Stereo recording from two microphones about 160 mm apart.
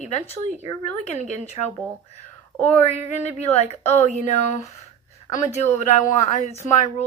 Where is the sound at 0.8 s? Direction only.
45° left (ahead or behind).